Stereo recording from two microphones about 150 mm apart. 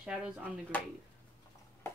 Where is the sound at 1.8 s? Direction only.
20° left (ahead or behind).